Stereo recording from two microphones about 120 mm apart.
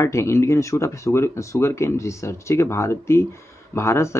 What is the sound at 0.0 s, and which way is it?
Speech, 25° left (ahead or behind).